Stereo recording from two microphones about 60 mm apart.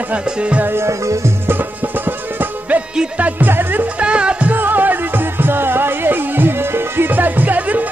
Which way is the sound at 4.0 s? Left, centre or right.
Centre.